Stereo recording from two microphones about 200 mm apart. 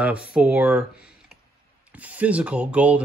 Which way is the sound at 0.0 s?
5° right (ahead or behind).